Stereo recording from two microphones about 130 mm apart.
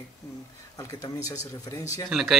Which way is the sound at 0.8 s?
25° left (ahead or behind).